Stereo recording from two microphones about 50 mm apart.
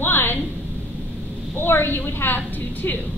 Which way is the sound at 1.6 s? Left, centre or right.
Left.